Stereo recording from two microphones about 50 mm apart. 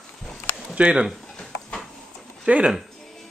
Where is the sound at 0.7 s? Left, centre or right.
Right.